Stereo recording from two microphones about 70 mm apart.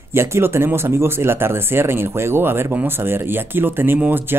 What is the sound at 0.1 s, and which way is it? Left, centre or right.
Speech, right.